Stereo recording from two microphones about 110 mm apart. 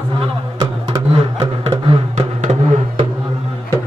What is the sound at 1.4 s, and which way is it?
Beatboxing, 60° right (ahead or behind).